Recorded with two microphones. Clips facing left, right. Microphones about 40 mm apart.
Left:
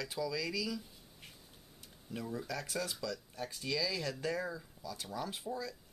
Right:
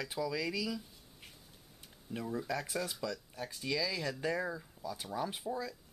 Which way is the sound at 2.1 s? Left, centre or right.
Centre.